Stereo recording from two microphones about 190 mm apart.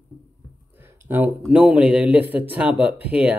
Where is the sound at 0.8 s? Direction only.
10° right (ahead or behind).